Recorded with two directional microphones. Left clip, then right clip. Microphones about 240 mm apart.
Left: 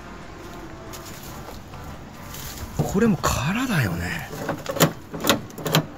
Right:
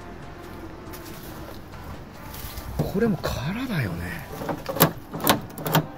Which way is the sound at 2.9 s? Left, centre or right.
Left.